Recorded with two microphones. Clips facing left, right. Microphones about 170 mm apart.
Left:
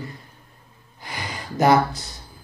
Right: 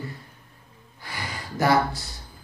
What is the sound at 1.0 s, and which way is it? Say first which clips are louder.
Gasp: left 2 dB; 20° left (ahead or behind).